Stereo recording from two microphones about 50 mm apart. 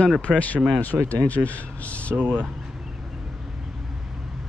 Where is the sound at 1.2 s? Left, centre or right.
Left.